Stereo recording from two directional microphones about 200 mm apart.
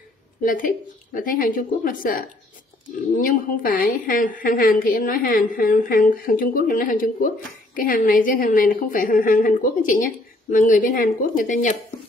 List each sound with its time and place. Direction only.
0.4 s a woman's voice: 45° left (ahead or behind)